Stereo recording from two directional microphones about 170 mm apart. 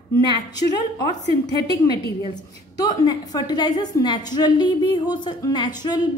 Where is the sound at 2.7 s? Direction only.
20° left (ahead or behind).